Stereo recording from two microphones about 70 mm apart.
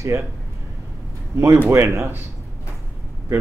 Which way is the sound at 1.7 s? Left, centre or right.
Right.